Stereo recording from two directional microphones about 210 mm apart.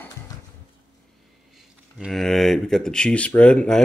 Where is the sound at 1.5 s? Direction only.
Centre (ahead or behind).